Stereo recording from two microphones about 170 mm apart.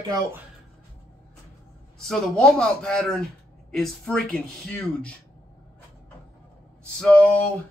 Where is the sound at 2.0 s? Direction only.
5° left (ahead or behind).